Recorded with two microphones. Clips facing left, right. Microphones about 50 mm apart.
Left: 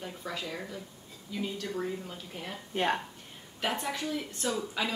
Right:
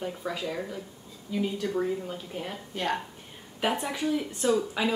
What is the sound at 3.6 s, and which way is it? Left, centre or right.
A woman's voice, centre.